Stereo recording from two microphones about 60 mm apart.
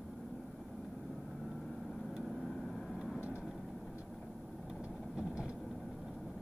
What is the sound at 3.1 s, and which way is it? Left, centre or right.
Vehicle, centre.